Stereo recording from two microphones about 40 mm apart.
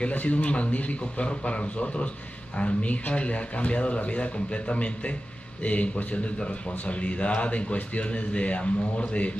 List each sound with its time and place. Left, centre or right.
0.1 s speech: left